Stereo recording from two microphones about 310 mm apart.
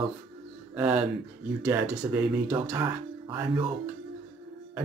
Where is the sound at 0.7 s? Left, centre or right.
Centre.